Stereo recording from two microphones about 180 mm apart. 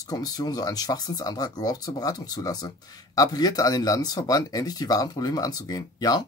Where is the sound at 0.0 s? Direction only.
20° left (ahead or behind).